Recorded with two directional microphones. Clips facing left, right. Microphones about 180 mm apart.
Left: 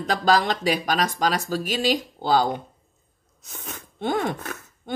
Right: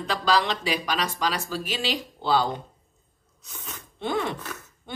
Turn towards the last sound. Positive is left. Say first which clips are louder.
# left 5 dB
turn(degrees=50)  # may be behind; listen again after turning